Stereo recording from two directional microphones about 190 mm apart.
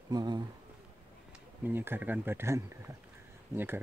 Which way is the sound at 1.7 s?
10° right (ahead or behind).